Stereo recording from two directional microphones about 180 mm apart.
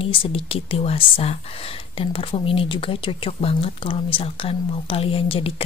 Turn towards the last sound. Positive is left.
turn(degrees=30)  # may be behind; listen again after turning